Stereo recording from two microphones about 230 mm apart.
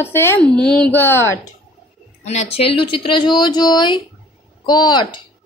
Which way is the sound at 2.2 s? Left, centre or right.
Left.